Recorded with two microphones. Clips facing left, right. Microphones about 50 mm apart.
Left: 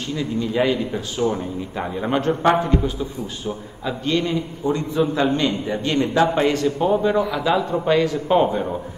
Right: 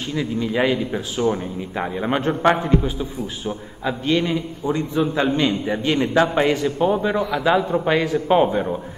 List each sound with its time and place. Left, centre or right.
0.1 s speech: centre
7.2 s a man's voice: centre
7.4 s a man's voice: right